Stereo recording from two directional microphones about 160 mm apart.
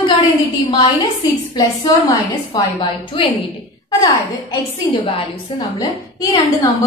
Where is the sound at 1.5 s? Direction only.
25° left (ahead or behind).